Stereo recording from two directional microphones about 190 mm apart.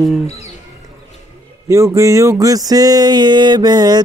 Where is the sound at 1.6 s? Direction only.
15° right (ahead or behind).